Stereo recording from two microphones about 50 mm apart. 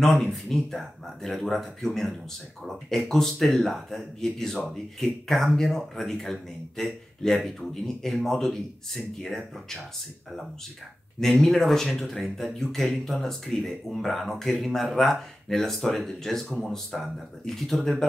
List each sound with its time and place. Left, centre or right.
0.0 s speech: centre
11.1 s speech: centre